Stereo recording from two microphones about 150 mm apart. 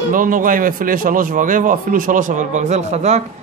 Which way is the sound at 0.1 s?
65° right (ahead or behind).